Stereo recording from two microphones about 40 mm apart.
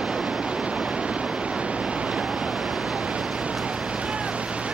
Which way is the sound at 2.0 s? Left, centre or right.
Centre.